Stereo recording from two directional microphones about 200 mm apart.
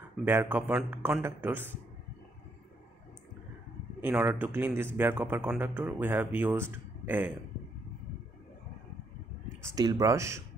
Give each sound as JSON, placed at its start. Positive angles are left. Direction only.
{"t": 0.2, "sound": "a man's voice", "side_deg": -10}
{"t": 4.0, "sound": "a man's voice", "side_deg": -10}
{"t": 9.6, "sound": "a man's voice", "side_deg": -15}